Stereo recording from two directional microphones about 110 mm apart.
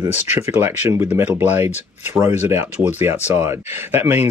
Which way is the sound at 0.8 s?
20° right (ahead or behind).